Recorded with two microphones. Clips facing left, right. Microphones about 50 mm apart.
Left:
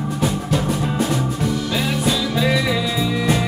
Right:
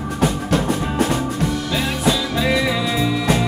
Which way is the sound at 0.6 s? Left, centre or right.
Right.